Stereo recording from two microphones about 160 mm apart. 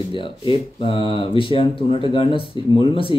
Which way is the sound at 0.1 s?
35° left (ahead or behind).